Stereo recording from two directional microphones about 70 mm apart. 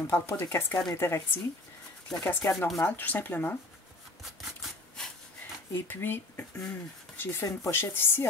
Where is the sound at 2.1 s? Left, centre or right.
Centre.